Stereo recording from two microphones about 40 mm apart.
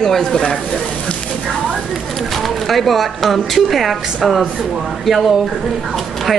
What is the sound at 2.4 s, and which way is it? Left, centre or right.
Speech, centre.